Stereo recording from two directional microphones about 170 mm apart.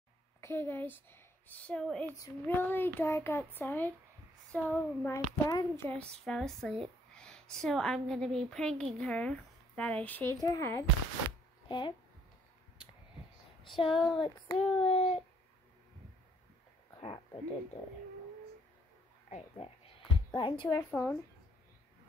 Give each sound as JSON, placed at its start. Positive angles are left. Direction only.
{"t": 0.4, "sound": "a woman's voice", "side_deg": 15}
{"t": 5.9, "sound": "a woman's voice", "side_deg": 5}
{"t": 13.7, "sound": "child singing", "side_deg": 30}
{"t": 17.0, "sound": "speech", "side_deg": 30}
{"t": 19.3, "sound": "child singing", "side_deg": 35}
{"t": 20.2, "sound": "a woman's voice", "side_deg": 30}
{"t": 20.9, "sound": "a child's voice", "side_deg": 10}